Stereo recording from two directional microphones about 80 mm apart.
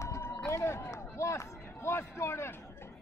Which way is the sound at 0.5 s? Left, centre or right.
Left.